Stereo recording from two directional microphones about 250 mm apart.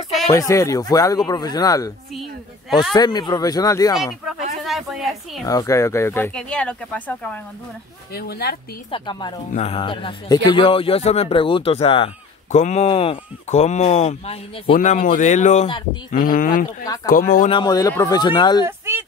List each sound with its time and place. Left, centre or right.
0.3 s speech: centre
2.9 s speech: centre
4.6 s speech: centre
5.4 s speech: centre
8.1 s speech: left
8.9 s speech: centre; by 16.6 s left
16.8 s speech: centre
17.1 s speech: left
17.5 s speech: centre
18.7 s a sound: centre